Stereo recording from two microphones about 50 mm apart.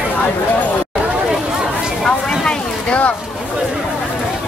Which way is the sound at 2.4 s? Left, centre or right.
Left.